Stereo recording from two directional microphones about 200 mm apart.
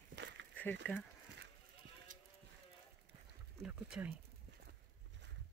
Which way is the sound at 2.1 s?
40° right (ahead or behind).